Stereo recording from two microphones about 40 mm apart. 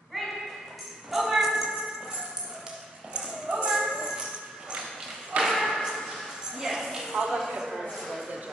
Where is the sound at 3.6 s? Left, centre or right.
Centre.